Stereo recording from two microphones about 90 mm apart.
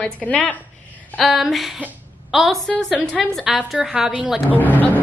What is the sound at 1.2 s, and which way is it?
A woman's voice, centre (ahead or behind).